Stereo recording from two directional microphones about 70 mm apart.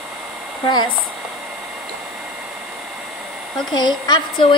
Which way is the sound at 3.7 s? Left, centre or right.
Left.